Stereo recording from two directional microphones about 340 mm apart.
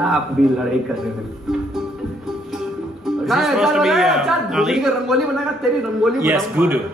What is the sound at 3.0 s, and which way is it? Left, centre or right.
A man's voice, centre.